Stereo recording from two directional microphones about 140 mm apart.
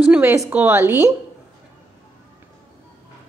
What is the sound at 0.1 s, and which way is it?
A woman's voice, 15° right (ahead or behind).